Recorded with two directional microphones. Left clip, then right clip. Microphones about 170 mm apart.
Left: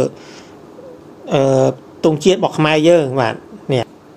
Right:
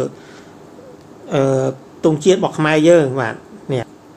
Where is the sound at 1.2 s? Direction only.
30° left (ahead or behind).